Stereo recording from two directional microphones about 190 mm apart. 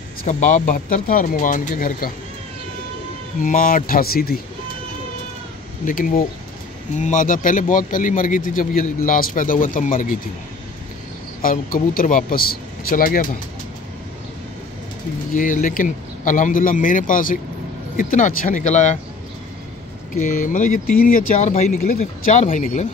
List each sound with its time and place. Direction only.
0.2 s a man's voice: 40° left (ahead or behind)
3.4 s a man's voice: 45° left (ahead or behind)
5.9 s a man's voice: 45° left (ahead or behind)
11.4 s a man's voice: 50° left (ahead or behind)
15.3 s a man's voice: 45° left (ahead or behind)
20.2 s a man's voice: 40° left (ahead or behind)